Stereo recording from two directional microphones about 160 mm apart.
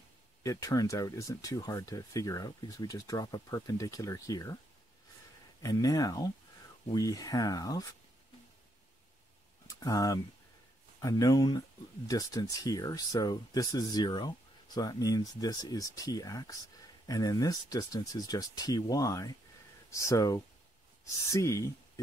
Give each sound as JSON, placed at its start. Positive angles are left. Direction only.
{"t": 0.4, "sound": "speech", "side_deg": 20}
{"t": 5.6, "sound": "speech", "side_deg": 20}
{"t": 9.7, "sound": "speech", "side_deg": 25}